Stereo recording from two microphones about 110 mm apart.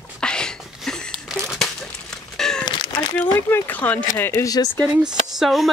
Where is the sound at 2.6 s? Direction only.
40° left (ahead or behind).